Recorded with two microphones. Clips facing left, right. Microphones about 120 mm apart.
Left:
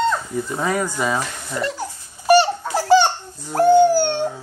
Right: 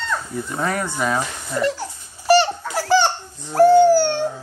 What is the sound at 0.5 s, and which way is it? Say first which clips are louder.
Speech: left 1 dB; 5° left (ahead or behind).